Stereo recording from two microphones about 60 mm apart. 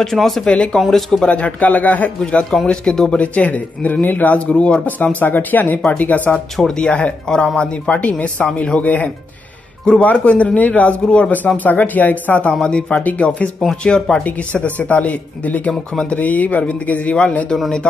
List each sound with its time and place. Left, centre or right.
0.0 s speech: centre
0.5 s speech: centre
0.7 s speech: centre
1.2 s speech: left
2.2 s speech: centre
3.3 s speech: left
12.6 s speech: centre
13.6 s speech: centre
14.2 s speech: left
15.9 s speech: centre
16.2 s speech: left